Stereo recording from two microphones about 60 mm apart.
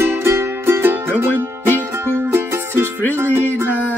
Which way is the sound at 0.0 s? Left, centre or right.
Right.